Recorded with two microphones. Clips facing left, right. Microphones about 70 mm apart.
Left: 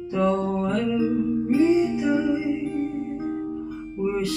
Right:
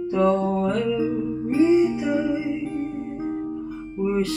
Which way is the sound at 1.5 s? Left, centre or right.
Right.